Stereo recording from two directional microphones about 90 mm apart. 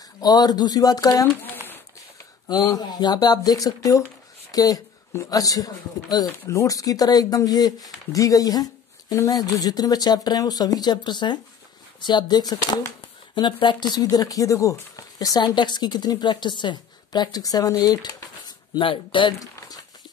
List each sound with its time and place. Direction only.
0.2 s speech: 45° left (ahead or behind)
2.4 s speech: 45° left (ahead or behind)
13.0 s speech: 65° left (ahead or behind); by 18.5 s 45° left (ahead or behind)
18.8 s speech: 70° left (ahead or behind)